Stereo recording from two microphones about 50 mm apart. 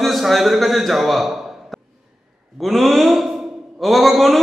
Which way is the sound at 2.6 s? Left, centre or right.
Centre.